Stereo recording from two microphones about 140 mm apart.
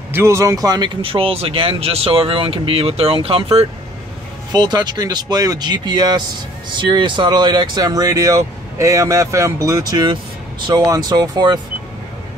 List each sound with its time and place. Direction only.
0.1 s speech: 20° right (ahead or behind); by 3.6 s 45° right (ahead or behind)
4.5 s speech: 30° right (ahead or behind)